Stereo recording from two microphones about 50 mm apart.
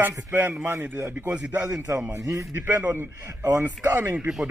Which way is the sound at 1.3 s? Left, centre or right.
Right.